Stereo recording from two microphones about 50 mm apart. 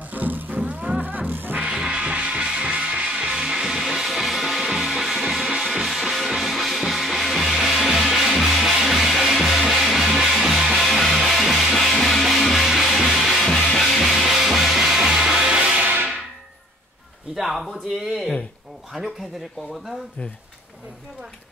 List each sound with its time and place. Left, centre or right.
0.1 s music: right
1.7 s music: centre
2.0 s music: right; by 15.3 s centre
17.4 s a sound: centre